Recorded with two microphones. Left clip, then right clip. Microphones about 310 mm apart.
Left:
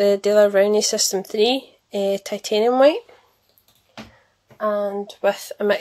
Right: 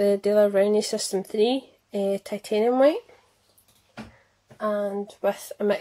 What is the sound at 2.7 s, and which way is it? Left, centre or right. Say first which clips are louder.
Speech: left 5 dB; left.